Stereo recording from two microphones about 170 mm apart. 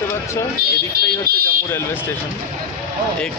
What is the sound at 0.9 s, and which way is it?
Speech, 60° right (ahead or behind).